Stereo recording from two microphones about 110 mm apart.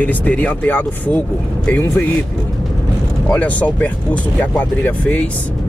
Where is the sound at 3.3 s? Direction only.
15° left (ahead or behind).